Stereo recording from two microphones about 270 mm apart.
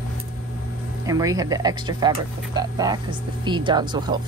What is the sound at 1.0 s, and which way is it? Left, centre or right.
Speech, centre.